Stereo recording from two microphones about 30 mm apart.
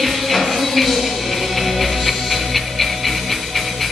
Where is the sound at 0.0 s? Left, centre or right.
Centre.